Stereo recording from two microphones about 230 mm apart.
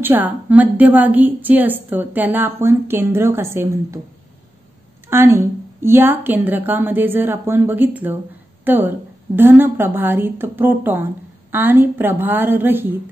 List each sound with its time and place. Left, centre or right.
0.0 s a woman's voice: centre
5.1 s a woman's voice: centre